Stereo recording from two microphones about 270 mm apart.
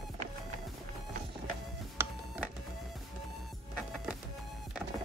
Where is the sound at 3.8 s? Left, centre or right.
Centre.